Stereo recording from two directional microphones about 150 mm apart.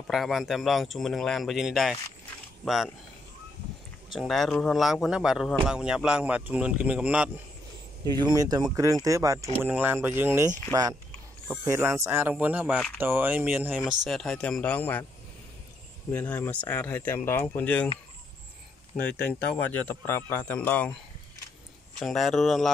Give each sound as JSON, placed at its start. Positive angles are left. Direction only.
{"t": 0.1, "sound": "speech", "side_deg": 0}
{"t": 4.1, "sound": "speech", "side_deg": 0}
{"t": 8.0, "sound": "speech", "side_deg": -25}
{"t": 12.7, "sound": "speech", "side_deg": 5}
{"t": 13.0, "sound": "speech", "side_deg": -15}
{"t": 13.8, "sound": "speech", "side_deg": 0}
{"t": 16.1, "sound": "speech", "side_deg": 10}
{"t": 19.0, "sound": "speech", "side_deg": 5}
{"t": 21.9, "sound": "speech", "side_deg": 0}